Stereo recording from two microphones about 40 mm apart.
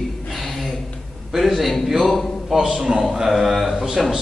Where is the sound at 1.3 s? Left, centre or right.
Centre.